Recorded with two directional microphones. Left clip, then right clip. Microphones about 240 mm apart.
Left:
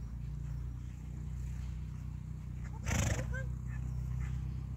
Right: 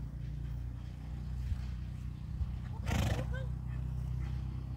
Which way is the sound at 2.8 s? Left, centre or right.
Centre.